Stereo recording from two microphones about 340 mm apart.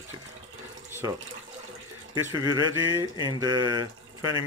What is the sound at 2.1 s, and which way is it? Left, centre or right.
Speech, centre.